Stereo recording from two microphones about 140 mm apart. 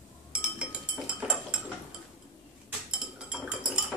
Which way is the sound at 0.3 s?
5° right (ahead or behind).